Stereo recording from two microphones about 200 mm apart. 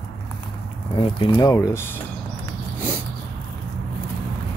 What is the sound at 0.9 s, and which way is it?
Speech, 25° left (ahead or behind).